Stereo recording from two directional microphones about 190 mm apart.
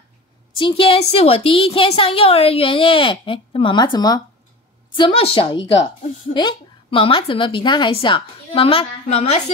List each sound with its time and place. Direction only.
0.6 s a woman's voice: 25° left (ahead or behind)